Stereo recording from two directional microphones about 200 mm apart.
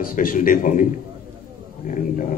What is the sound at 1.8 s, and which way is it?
Speech, 40° left (ahead or behind).